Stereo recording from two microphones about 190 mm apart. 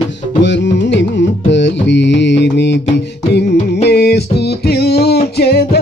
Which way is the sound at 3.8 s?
60° left (ahead or behind).